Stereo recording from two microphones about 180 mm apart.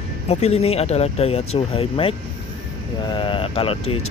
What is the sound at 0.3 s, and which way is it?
Speech, 35° left (ahead or behind).